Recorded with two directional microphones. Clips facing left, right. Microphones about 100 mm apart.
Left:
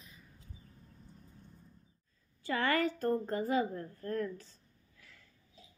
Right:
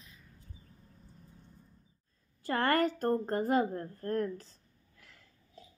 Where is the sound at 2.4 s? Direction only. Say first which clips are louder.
Right 3 dB; 45° right (ahead or behind).